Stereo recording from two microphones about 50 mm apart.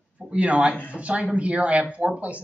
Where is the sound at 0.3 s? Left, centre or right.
Right.